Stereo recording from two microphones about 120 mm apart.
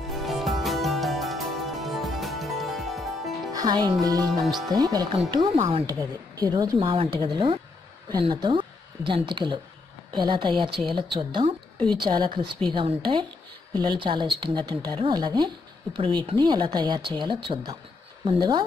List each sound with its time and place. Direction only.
0.1 s music: centre (ahead or behind)
3.5 s speech: 35° right (ahead or behind)
4.3 s speech: centre (ahead or behind)
4.6 s a woman's voice: 35° right (ahead or behind)
5.9 s a woman's voice: 30° right (ahead or behind)
16.0 s speech: 50° right (ahead or behind)